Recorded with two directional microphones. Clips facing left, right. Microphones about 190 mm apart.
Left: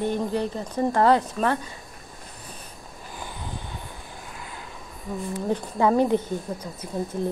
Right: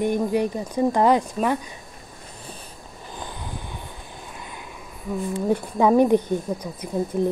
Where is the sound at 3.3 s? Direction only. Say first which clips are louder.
Right 1 dB; 15° right (ahead or behind).